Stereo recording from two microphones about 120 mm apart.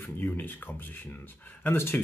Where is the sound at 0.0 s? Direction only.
15° left (ahead or behind).